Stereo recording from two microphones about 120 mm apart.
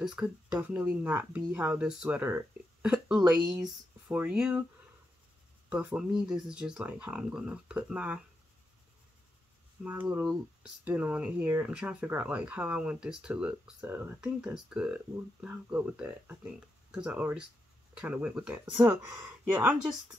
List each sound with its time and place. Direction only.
0.0 s speech: 10° right (ahead or behind)
2.8 s a sound: 10° right (ahead or behind)
3.2 s speech: 15° right (ahead or behind)
3.6 s speech: 5° right (ahead or behind)
5.7 s speech: 10° right (ahead or behind)
9.8 s speech: 15° right (ahead or behind)